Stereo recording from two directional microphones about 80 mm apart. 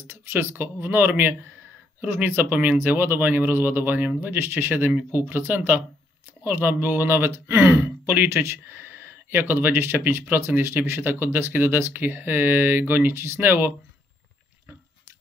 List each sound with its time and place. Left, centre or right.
0.0 s speech: right